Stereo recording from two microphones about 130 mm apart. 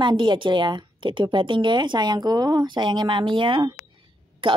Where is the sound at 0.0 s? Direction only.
35° right (ahead or behind).